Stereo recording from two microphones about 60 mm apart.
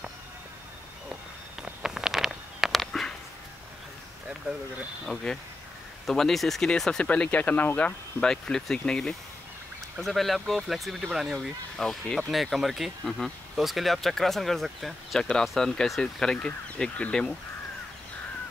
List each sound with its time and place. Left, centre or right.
1.6 s a sound: centre
2.8 s a sound: centre
5.3 s speech: centre
6.8 s speech: centre
7.1 s speech: left
8.2 s speech: centre
9.9 s speech: centre
15.1 s speech: centre